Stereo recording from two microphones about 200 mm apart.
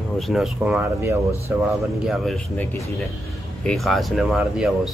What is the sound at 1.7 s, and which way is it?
Speech, centre (ahead or behind).